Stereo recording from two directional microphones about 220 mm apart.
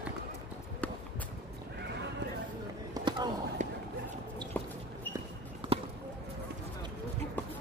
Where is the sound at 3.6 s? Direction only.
35° right (ahead or behind).